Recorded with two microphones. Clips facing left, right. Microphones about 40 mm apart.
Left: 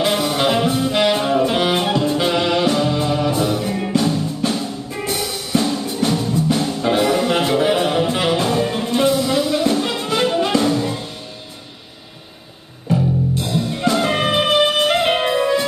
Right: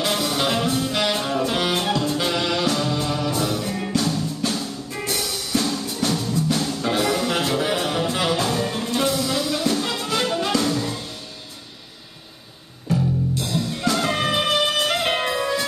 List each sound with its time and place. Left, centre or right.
0.0 s music: left
12.9 s music: left